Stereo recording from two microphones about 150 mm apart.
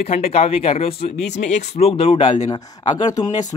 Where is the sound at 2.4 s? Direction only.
25° left (ahead or behind).